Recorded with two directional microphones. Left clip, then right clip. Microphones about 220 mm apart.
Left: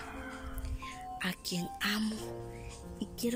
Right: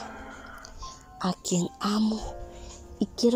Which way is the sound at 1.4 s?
30° right (ahead or behind).